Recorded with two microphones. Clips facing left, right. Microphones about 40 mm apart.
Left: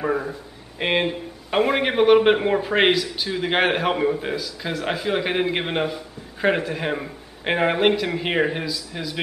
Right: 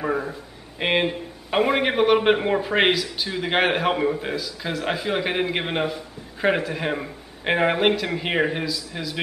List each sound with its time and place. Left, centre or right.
0.0 s a man's voice: centre